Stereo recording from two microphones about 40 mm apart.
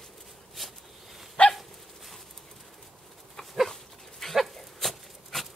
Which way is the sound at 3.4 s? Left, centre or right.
Centre.